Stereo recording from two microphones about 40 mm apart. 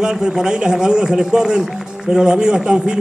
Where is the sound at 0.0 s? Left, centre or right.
Centre.